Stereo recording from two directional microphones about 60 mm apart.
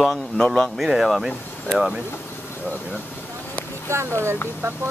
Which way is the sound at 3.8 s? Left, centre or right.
Right.